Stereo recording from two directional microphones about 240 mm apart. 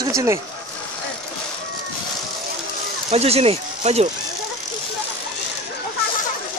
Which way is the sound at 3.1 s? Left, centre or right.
Right.